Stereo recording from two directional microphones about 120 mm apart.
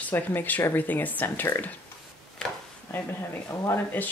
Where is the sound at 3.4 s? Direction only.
20° left (ahead or behind).